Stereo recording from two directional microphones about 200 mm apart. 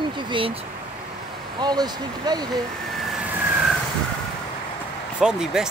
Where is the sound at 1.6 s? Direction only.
20° right (ahead or behind).